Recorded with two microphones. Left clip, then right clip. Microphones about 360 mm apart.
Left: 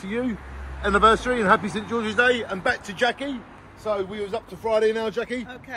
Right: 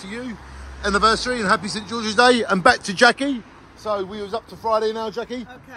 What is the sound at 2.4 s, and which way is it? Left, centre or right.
A man's voice, right.